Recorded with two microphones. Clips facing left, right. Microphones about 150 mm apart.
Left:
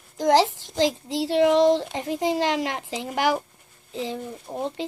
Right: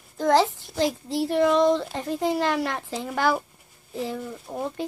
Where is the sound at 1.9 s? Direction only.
15° left (ahead or behind).